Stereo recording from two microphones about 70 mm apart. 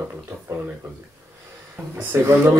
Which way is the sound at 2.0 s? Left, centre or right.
Right.